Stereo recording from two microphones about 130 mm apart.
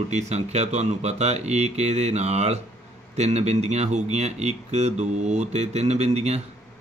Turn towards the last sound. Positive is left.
turn(degrees=-55)  # may be behind; listen again after turning